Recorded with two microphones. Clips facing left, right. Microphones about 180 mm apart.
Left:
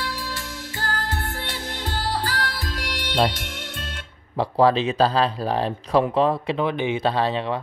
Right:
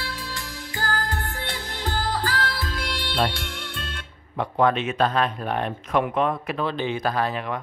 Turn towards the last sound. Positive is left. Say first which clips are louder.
# left 3 dB
turn(degrees=15)  # may be behind; listen again after turning